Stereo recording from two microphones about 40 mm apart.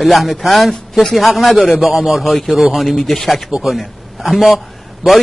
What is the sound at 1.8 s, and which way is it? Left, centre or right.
A man's voice, centre.